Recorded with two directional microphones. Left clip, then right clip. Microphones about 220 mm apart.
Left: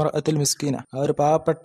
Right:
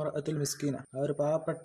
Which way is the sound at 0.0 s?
40° left (ahead or behind).